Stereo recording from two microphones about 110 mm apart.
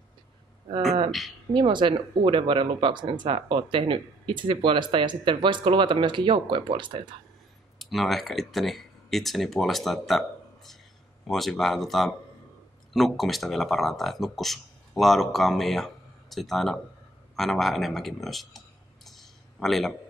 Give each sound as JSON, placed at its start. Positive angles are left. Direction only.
{"t": 1.5, "sound": "speech", "side_deg": -45}
{"t": 7.8, "sound": "speech", "side_deg": 0}
{"t": 19.0, "sound": "a sound", "side_deg": 0}